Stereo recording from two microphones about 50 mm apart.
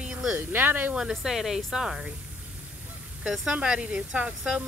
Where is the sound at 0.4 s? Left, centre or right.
Right.